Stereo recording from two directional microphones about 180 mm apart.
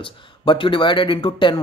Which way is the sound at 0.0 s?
30° left (ahead or behind).